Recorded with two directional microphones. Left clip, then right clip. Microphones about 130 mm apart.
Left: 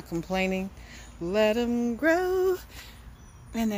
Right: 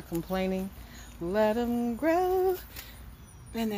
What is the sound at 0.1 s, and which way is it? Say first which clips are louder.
Female singing: left 3 dB; 35° left (ahead or behind).